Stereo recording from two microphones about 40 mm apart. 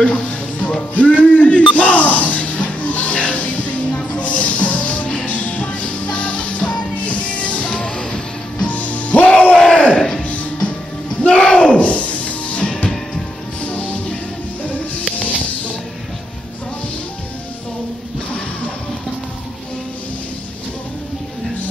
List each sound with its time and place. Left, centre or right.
0.0 s music: left
7.9 s music: left
8.6 s music: left